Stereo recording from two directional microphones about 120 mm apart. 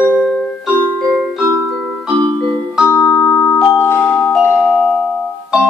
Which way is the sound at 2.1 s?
40° right (ahead or behind).